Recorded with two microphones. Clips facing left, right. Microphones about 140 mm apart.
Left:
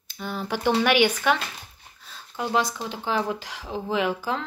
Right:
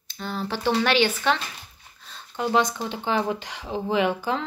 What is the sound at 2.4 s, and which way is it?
A woman's voice, centre (ahead or behind).